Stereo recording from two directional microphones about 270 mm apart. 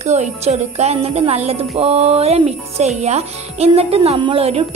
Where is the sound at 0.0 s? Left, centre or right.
Right.